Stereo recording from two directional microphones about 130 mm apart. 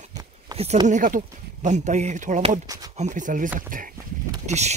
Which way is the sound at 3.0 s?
75° right (ahead or behind).